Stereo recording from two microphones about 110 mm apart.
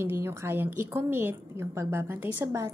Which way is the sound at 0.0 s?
25° right (ahead or behind).